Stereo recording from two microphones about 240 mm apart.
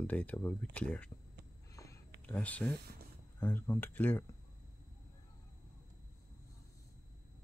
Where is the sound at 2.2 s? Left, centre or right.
Centre.